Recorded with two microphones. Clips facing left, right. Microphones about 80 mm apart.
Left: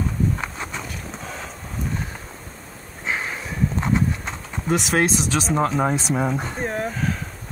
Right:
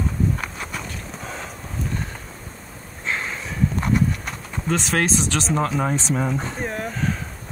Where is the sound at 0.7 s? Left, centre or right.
Centre.